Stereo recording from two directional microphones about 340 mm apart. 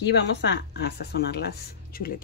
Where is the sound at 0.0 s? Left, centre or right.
Left.